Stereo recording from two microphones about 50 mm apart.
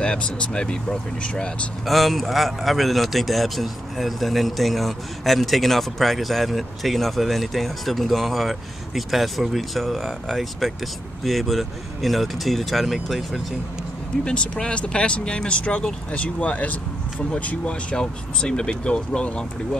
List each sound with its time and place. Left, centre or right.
0.0 s speech: left
1.9 s speech: centre
14.2 s speech: left